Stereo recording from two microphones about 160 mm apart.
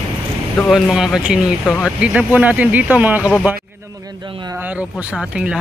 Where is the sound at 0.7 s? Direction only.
5° right (ahead or behind).